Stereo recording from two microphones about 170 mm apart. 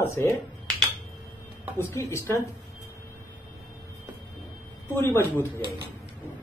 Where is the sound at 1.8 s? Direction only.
15° left (ahead or behind).